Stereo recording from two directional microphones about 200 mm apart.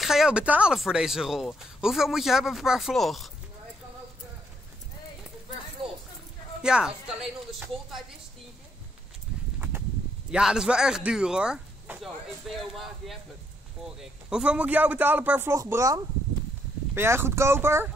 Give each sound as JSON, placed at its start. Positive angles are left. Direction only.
{"t": 0.0, "sound": "speech", "side_deg": 0}
{"t": 5.8, "sound": "a sound", "side_deg": -25}
{"t": 6.6, "sound": "speech", "side_deg": -5}
{"t": 10.3, "sound": "a man's voice", "side_deg": -5}